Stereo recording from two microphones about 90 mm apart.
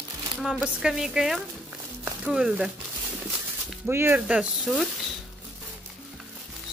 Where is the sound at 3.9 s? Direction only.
25° right (ahead or behind).